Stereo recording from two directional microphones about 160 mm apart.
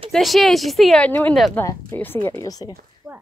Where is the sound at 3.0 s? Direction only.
5° right (ahead or behind).